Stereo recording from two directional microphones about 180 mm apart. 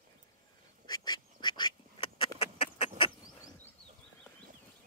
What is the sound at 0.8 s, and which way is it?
Duck, 25° left (ahead or behind).